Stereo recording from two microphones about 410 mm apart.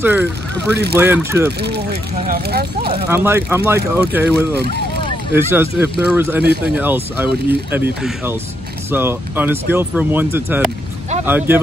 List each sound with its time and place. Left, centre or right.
0.0 s speech: centre
1.6 s speech: right
3.1 s speech: centre
6.4 s speech: right
6.7 s speech: centre